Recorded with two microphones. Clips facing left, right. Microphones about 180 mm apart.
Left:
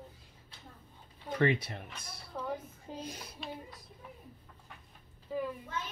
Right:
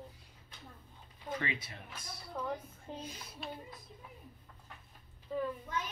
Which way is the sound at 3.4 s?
Centre (ahead or behind).